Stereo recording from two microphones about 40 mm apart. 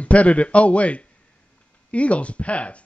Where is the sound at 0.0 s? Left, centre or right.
Left.